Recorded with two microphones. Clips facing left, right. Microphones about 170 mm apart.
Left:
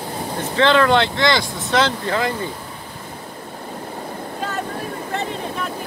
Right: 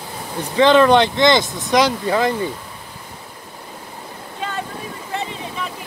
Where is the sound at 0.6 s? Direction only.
20° right (ahead or behind).